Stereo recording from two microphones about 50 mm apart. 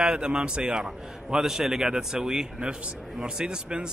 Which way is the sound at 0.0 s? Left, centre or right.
Centre.